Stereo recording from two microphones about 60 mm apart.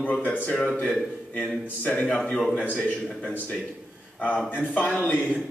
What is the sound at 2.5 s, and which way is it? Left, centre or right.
Speech, left.